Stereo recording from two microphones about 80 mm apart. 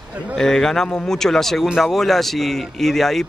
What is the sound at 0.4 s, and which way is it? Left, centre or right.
A man's voice, centre.